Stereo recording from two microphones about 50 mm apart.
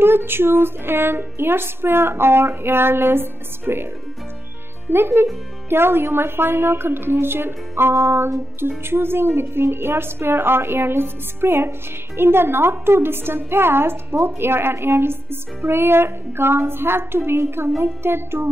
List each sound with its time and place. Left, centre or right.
0.0 s music: right
4.9 s music: right